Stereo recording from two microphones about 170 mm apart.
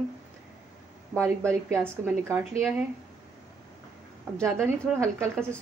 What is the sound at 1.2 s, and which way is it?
A woman's voice, 15° right (ahead or behind).